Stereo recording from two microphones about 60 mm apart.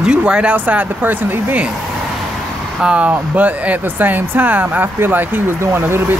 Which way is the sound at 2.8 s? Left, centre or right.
Right.